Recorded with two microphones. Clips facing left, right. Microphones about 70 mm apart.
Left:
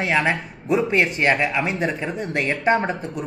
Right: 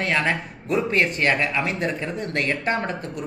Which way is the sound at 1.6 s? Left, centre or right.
Centre.